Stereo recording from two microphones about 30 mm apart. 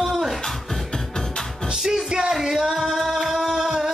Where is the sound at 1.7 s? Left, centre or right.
Centre.